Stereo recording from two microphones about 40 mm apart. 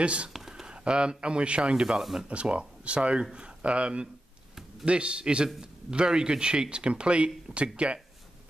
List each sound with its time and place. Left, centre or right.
0.0 s speech: right
0.3 s a sound: centre
0.7 s speech: right
2.0 s speech: centre
2.2 s speech: right